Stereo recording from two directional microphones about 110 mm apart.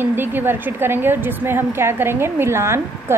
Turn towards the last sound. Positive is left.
turn(degrees=-25)  # may be behind; listen again after turning